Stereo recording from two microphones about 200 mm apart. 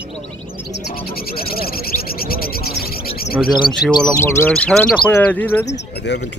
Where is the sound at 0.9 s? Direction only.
50° left (ahead or behind).